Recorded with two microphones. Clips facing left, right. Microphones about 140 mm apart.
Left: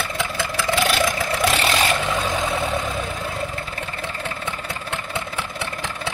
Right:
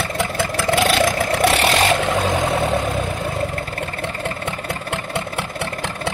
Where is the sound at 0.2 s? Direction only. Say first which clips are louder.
Right 5 dB; 50° right (ahead or behind).